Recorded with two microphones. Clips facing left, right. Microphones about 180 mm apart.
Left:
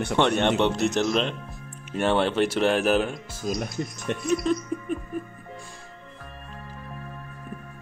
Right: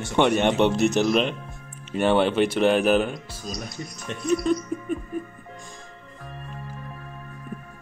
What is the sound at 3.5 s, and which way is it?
Speech, 55° left (ahead or behind).